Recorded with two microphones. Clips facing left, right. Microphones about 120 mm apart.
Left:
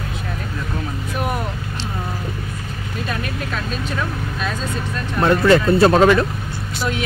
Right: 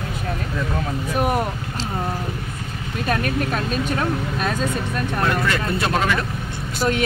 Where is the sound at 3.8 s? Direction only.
50° right (ahead or behind).